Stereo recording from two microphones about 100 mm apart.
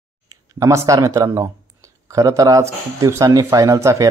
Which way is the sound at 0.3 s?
30° right (ahead or behind).